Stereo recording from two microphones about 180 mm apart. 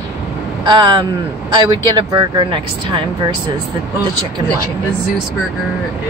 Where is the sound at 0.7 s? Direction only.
25° right (ahead or behind).